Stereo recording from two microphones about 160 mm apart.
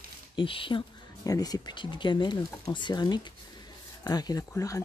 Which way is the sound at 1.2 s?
25° left (ahead or behind).